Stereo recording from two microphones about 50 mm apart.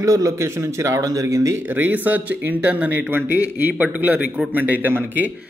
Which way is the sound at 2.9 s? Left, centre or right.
Right.